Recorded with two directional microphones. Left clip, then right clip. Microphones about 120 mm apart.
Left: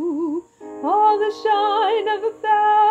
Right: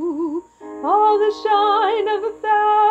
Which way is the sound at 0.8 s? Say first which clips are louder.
Right 1 dB; 5° left (ahead or behind).